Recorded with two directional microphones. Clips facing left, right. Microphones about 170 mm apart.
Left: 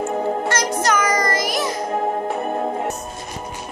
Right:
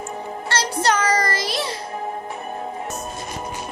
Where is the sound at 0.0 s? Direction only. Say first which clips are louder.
Left 9 dB; 60° left (ahead or behind).